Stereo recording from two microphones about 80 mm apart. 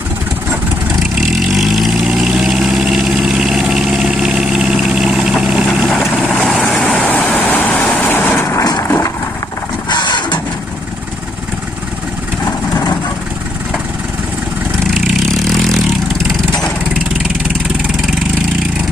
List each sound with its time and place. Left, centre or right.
1.5 s vehicle: centre
6.3 s vehicle: centre
7.1 s vehicle: left
8.8 s a sound: left
9.8 s vehicle: left